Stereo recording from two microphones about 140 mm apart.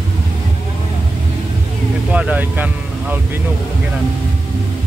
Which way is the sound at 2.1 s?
10° right (ahead or behind).